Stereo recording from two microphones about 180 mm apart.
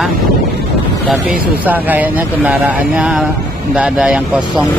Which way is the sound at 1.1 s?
5° right (ahead or behind).